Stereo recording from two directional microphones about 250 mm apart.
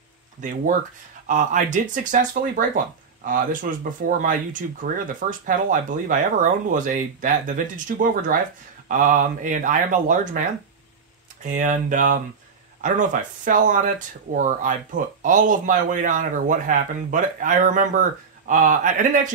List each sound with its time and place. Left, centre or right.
0.4 s speech: right
11.4 s speech: right